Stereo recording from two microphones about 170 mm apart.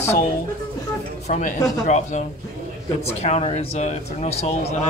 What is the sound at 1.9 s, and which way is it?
Speech, 45° left (ahead or behind).